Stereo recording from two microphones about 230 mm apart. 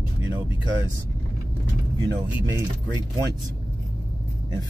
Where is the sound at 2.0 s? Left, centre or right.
Centre.